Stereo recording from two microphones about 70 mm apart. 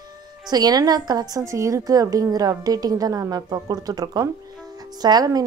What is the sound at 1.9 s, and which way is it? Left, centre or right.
A woman's voice, right.